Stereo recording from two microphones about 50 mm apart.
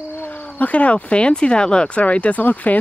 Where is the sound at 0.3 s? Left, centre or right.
Left.